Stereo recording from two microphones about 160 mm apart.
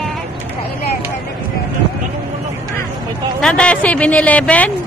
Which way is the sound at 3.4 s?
5° left (ahead or behind).